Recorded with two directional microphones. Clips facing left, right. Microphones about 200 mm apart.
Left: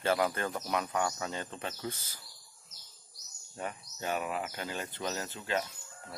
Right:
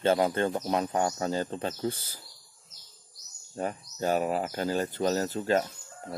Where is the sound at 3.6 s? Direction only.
35° right (ahead or behind).